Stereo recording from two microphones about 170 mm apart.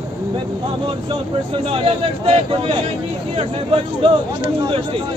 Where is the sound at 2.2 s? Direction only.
35° right (ahead or behind).